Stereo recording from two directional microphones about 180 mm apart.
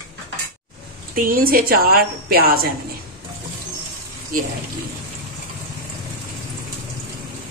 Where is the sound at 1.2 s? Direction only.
50° right (ahead or behind).